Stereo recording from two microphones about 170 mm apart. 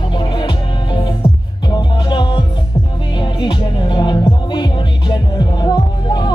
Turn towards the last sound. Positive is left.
turn(degrees=25)  # may be behind; listen again after turning